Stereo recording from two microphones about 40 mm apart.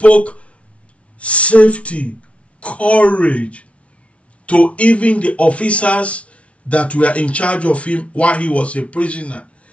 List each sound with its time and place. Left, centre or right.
0.0 s speech: left